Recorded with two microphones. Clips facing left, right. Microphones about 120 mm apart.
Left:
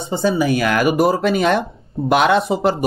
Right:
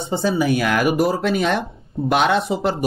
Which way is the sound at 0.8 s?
10° left (ahead or behind).